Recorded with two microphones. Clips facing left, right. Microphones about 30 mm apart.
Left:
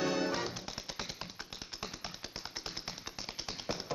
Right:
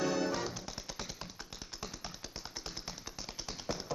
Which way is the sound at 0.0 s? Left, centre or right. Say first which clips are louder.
Even; left.